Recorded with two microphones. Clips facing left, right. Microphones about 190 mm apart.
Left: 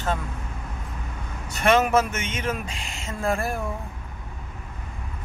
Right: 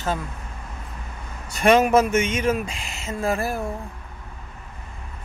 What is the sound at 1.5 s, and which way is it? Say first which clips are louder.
Speech: right 3 dB; 15° right (ahead or behind).